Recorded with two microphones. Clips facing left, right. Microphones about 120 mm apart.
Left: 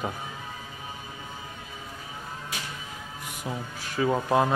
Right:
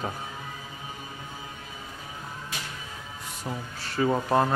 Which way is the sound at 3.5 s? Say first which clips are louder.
Left 1 dB; 10° left (ahead or behind).